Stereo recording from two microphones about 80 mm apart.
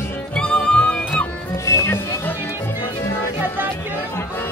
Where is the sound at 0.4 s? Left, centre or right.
Centre.